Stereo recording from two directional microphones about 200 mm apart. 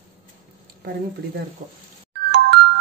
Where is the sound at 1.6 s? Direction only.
35° right (ahead or behind).